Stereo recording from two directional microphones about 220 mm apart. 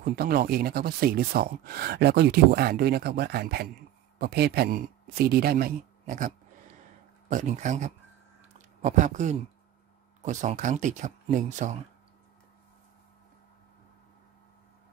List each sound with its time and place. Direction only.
0.0 s speech: 45° right (ahead or behind)